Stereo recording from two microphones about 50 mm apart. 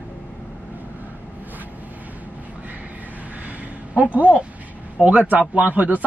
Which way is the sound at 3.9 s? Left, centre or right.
Right.